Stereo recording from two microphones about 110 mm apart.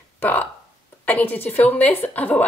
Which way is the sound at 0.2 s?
15° left (ahead or behind).